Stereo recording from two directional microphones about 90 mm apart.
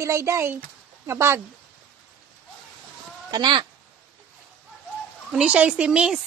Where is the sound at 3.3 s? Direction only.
50° right (ahead or behind).